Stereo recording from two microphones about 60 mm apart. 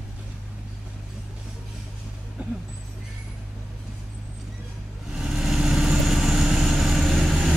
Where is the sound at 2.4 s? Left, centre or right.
Right.